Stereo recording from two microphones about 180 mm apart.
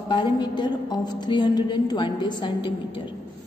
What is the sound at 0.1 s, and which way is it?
A woman's voice, 25° left (ahead or behind).